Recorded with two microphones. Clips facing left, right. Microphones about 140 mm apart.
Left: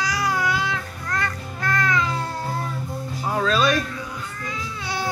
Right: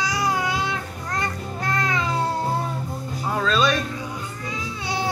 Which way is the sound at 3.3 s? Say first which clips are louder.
Left 1 dB; 5° left (ahead or behind).